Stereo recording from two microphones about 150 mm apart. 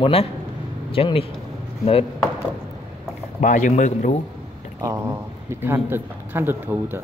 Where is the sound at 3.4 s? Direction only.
55° left (ahead or behind).